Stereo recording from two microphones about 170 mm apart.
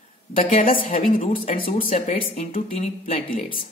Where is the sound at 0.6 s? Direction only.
50° left (ahead or behind).